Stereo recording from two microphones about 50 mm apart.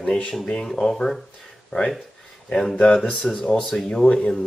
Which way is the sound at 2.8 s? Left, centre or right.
Centre.